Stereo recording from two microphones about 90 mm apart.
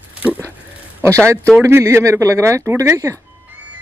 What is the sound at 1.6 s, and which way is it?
Speech, 30° right (ahead or behind).